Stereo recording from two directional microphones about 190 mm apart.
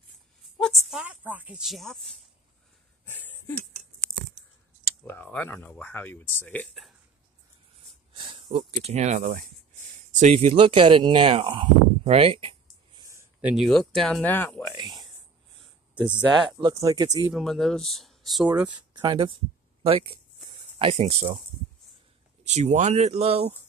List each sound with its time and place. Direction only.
0.6 s speech: centre (ahead or behind)
3.1 s a sound: 10° left (ahead or behind)
5.0 s speech: 10° left (ahead or behind)
8.1 s a sound: 25° right (ahead or behind)
8.5 s speech: 35° right (ahead or behind)
12.0 s a sound: 30° right (ahead or behind)
13.1 s speech: 10° right (ahead or behind); by 14.8 s 10° left (ahead or behind)
14.8 s a sound: 20° right (ahead or behind)
16.5 s speech: 20° right (ahead or behind)
17.3 s speech: centre (ahead or behind)
18.7 s speech: 25° right (ahead or behind)
22.5 s speech: 35° right (ahead or behind)